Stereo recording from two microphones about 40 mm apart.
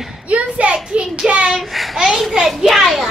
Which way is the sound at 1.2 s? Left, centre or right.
Centre.